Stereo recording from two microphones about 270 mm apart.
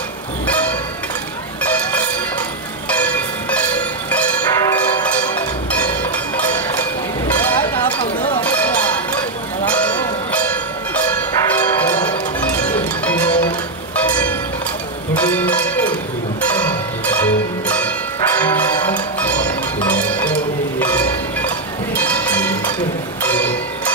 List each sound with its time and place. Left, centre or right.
0.5 s music: centre
2.9 s bell: centre
6.3 s a sound: centre
7.3 s vehicle: centre
8.4 s cowbell: centre
9.7 s a sound: centre
11.5 s bell: centre
13.0 s music: centre
15.1 s zither: centre
17.0 s music: centre
20.8 s train: centre
21.9 s music: centre
23.2 s bell: centre